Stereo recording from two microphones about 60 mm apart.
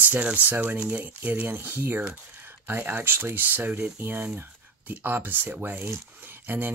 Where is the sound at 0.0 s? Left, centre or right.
Right.